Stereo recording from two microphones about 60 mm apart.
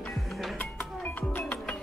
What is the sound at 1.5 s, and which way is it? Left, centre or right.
Music, centre.